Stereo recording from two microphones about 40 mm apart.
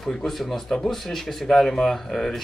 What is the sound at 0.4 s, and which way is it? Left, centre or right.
Speech, centre.